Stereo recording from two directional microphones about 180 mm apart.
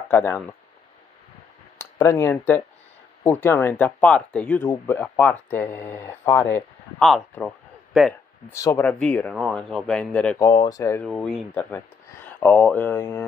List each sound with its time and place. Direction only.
0.1 s speech: 10° left (ahead or behind)
1.8 s speech: 15° left (ahead or behind)
7.9 s a man's voice: centre (ahead or behind)
8.5 s speech: 15° left (ahead or behind)
10.4 s speech: 25° left (ahead or behind)
11.1 s speech: centre (ahead or behind)
11.5 s a sound: 10° left (ahead or behind)
12.5 s speech: 5° left (ahead or behind)